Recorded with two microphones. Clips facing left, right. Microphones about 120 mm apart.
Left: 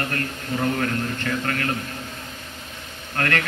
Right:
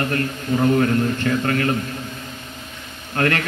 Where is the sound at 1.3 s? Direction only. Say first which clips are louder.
Right 4 dB; 20° right (ahead or behind).